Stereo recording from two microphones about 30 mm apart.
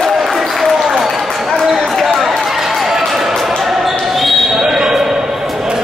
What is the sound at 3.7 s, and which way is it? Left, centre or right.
Basketball bounce, centre.